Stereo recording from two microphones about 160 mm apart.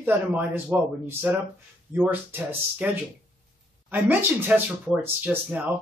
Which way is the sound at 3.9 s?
10° right (ahead or behind).